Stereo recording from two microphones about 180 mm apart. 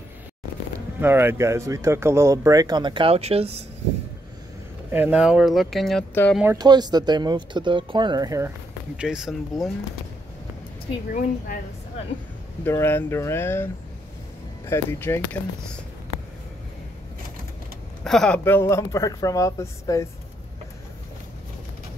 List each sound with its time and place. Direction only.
0.7 s speech: 10° right (ahead or behind); by 3.6 s 35° right (ahead or behind)
4.9 s speech: 10° right (ahead or behind)
6.3 s speech: 10° right (ahead or behind)
6.6 s speech: 25° right (ahead or behind)
8.9 s speech: 5° right (ahead or behind)
11.1 s a woman's voice: 50° left (ahead or behind)
12.6 s speech: 10° left (ahead or behind)
14.7 s speech: 15° left (ahead or behind)
18.0 s speech: 5° left (ahead or behind)